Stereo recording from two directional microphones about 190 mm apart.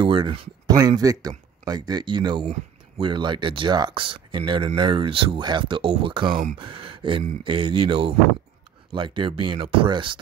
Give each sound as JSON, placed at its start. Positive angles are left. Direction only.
{"t": 0.0, "sound": "speech", "side_deg": -25}